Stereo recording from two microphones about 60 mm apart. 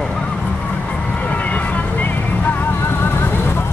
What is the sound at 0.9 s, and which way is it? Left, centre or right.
Music, left.